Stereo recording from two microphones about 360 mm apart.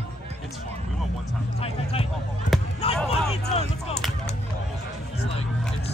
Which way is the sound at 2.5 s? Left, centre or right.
Centre.